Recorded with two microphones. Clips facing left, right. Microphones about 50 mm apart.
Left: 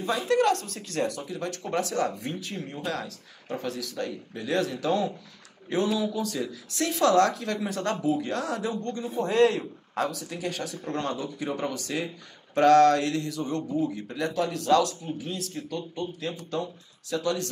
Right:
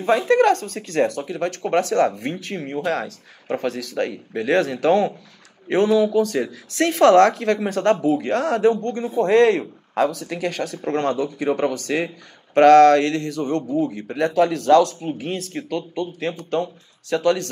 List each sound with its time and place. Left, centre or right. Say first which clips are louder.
0.3 s speech: right 4 dB; right